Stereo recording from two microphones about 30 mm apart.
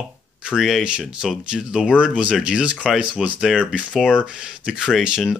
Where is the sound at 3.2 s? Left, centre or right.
Centre.